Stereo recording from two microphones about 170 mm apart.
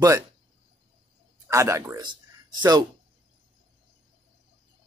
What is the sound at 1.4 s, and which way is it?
Speech, 20° right (ahead or behind).